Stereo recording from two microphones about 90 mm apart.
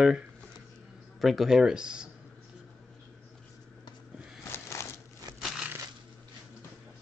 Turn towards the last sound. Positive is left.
turn(degrees=-5)  # may be behind; listen again after turning